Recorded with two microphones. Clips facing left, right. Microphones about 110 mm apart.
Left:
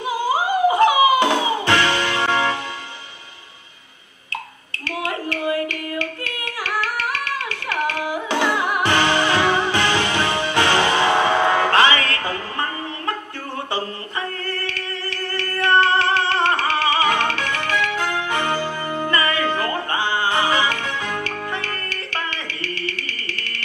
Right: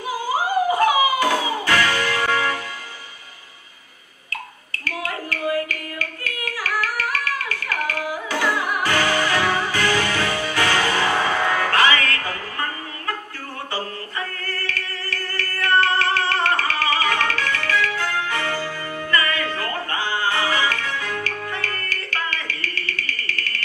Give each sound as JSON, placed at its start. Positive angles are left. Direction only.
{"t": 0.0, "sound": "music", "side_deg": 20}
{"t": 4.3, "sound": "a sound", "side_deg": 25}
{"t": 13.7, "sound": "chant", "side_deg": 20}